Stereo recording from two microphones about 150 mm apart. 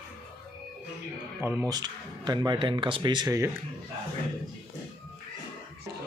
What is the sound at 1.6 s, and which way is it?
Speech, 25° right (ahead or behind).